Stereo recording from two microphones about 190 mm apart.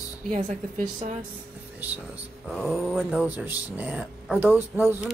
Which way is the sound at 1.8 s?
10° right (ahead or behind).